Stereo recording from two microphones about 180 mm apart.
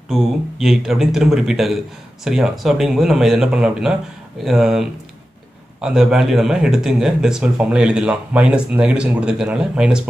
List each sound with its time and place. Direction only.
0.1 s speech: centre (ahead or behind)